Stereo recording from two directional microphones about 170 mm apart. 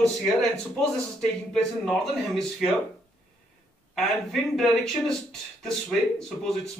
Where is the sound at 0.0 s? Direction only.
Centre (ahead or behind).